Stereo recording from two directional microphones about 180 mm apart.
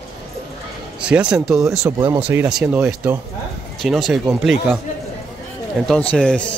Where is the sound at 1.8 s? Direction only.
15° right (ahead or behind).